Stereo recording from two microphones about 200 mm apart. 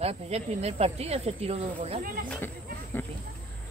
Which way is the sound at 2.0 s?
45° right (ahead or behind).